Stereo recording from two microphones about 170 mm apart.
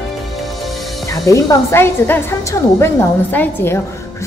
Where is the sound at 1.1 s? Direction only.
20° left (ahead or behind).